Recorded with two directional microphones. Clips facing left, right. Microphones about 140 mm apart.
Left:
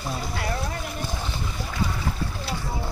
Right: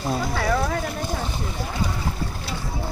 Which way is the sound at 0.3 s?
90° right.